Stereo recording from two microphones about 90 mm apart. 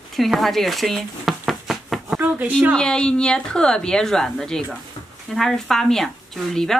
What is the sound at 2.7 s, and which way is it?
A woman's voice, 10° left (ahead or behind).